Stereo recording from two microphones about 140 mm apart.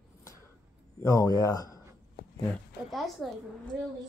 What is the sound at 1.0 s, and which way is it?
Speech, 25° left (ahead or behind).